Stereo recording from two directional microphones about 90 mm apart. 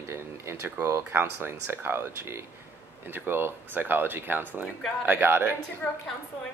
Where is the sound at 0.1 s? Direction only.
30° right (ahead or behind).